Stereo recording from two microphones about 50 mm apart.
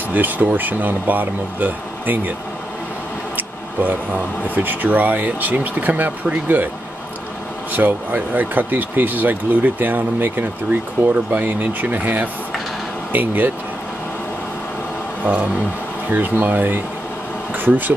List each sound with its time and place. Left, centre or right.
0.1 s speech: right
4.6 s speech: right
7.7 s speech: right
15.2 s speech: right